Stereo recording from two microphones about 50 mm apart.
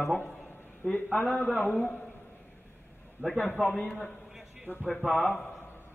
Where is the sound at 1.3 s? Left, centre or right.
Left.